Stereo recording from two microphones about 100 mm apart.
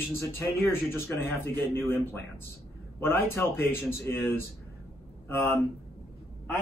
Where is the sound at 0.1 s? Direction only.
25° left (ahead or behind).